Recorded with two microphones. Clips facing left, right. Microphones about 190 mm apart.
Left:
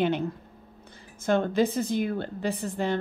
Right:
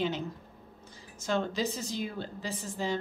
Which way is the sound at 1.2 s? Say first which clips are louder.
Left 7 dB; 55° left (ahead or behind).